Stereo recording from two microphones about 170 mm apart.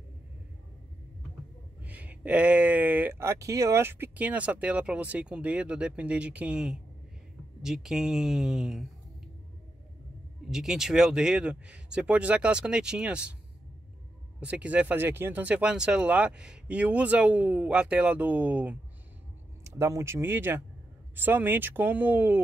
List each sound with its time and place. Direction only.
1.8 s speech: 10° right (ahead or behind)
10.5 s speech: centre (ahead or behind)
14.4 s speech: 5° right (ahead or behind)